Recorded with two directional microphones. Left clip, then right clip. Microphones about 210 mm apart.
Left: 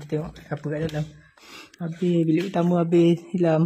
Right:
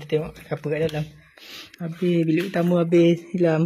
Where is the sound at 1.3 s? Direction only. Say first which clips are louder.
Right 5 dB; 25° left (ahead or behind).